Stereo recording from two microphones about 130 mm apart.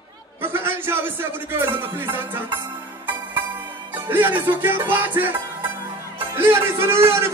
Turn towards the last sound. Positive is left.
turn(degrees=-20)  # may be behind; listen again after turning